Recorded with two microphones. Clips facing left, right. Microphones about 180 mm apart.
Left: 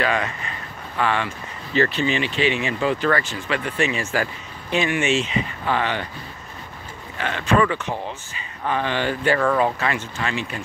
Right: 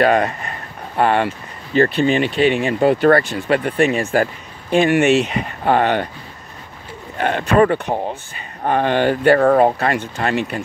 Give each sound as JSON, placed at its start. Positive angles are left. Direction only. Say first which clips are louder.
{"t": 0.0, "sound": "speech", "louder": "right 8 dB", "side_deg": -45}
{"t": 7.2, "sound": "speech", "louder": "right 5 dB", "side_deg": -50}
{"t": 9.4, "sound": "speech", "louder": "right 7 dB", "side_deg": -45}